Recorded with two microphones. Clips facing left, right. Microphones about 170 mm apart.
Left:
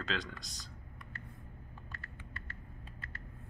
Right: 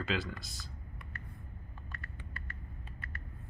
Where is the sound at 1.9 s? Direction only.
30° left (ahead or behind).